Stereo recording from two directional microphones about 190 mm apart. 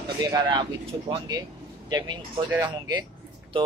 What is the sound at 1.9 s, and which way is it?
Speech, 20° right (ahead or behind).